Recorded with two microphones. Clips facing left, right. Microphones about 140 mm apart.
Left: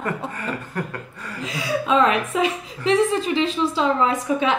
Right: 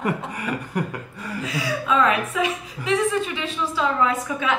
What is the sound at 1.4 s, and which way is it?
A woman's voice, 25° left (ahead or behind).